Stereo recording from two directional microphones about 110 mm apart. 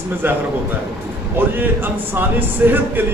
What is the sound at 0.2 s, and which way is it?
Speech, 20° right (ahead or behind).